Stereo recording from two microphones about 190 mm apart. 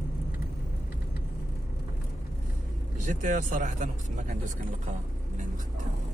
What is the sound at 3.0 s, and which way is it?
Speech, 40° right (ahead or behind).